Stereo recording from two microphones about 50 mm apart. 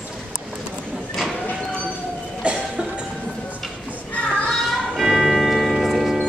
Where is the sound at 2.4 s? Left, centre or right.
Right.